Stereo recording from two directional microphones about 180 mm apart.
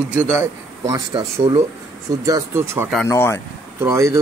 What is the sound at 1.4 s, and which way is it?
Speech, 35° right (ahead or behind).